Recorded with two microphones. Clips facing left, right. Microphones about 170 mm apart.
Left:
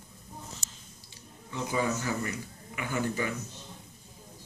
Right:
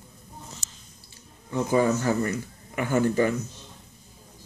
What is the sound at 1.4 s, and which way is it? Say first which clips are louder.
A man's voice: right 8 dB; 45° right (ahead or behind).